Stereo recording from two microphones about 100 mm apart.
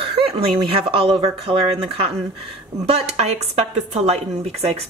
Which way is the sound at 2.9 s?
90° right.